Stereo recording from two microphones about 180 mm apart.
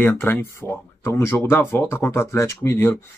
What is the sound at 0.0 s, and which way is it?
Speech, 10° left (ahead or behind).